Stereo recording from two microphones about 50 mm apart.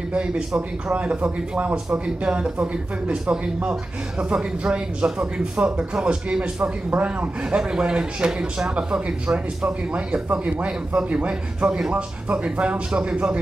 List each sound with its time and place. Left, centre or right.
0.1 s a man's voice: right
1.9 s speech: centre